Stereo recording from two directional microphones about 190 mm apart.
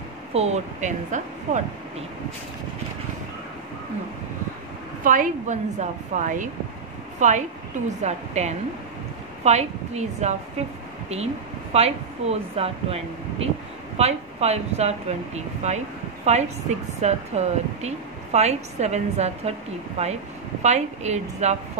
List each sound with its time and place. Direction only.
0.3 s a woman's voice: 35° right (ahead or behind)
5.0 s a woman's voice: 45° right (ahead or behind)
11.7 s a woman's voice: 30° right (ahead or behind)